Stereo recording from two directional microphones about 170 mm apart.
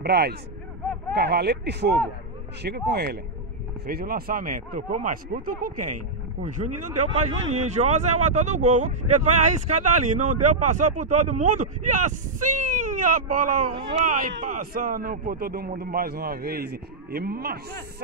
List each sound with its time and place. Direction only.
0.0 s a man's voice: 70° right (ahead or behind)